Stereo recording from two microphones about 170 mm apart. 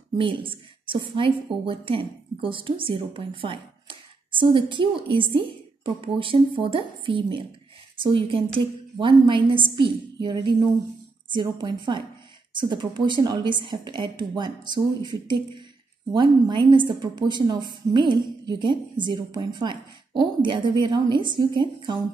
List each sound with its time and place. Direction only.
0.2 s a woman's voice: 30° right (ahead or behind)